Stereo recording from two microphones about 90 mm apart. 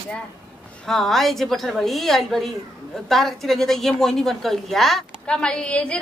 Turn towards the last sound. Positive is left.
turn(degrees=15)  # may be behind; listen again after turning